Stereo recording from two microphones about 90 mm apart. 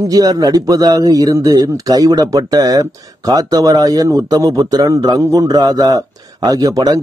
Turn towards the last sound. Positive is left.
turn(degrees=-45)  # may be behind; listen again after turning